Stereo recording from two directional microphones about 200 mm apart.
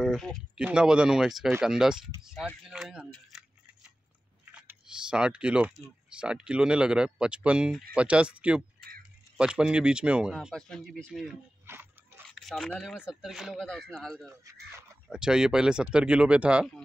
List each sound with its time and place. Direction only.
0.0 s speech: centre (ahead or behind)
4.5 s speech: 5° right (ahead or behind)
11.6 s a sound: 10° right (ahead or behind)
12.3 s speech: centre (ahead or behind)